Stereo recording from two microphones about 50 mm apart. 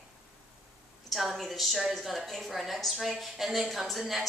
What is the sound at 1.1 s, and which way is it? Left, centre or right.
Speech, centre.